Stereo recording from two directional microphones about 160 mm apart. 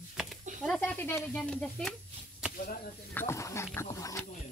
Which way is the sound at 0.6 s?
5° left (ahead or behind).